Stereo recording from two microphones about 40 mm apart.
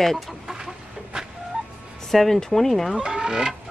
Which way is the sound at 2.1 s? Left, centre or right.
Centre.